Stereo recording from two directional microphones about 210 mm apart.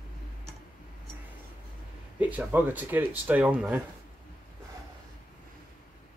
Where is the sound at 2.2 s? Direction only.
5° right (ahead or behind).